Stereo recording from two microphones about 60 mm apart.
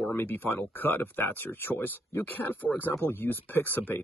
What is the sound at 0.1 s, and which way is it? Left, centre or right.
Speech, left.